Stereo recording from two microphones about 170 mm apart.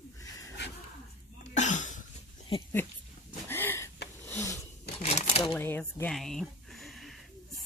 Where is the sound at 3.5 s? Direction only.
15° left (ahead or behind).